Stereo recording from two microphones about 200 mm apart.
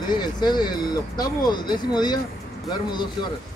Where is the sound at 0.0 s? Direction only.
20° left (ahead or behind).